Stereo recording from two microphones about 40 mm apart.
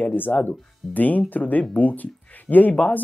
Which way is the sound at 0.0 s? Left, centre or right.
Left.